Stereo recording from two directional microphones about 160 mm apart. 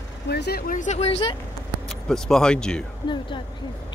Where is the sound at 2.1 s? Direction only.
5° left (ahead or behind).